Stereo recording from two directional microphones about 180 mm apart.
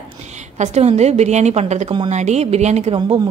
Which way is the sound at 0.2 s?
40° right (ahead or behind).